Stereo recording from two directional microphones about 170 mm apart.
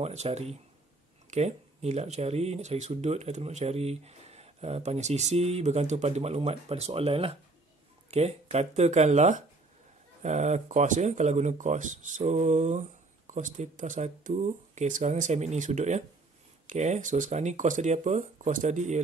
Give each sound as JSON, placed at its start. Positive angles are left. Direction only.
{"t": 0.0, "sound": "speech", "side_deg": -40}